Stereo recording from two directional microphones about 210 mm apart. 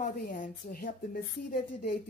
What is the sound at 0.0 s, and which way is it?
A woman's voice, 40° left (ahead or behind).